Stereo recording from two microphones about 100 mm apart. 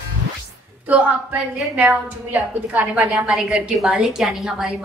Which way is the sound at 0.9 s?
15° right (ahead or behind).